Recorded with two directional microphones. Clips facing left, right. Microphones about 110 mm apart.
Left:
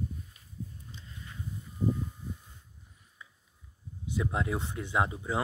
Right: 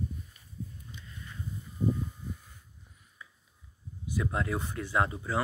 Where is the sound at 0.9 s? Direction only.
30° left (ahead or behind).